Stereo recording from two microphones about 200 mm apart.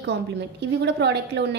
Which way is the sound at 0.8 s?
60° right (ahead or behind).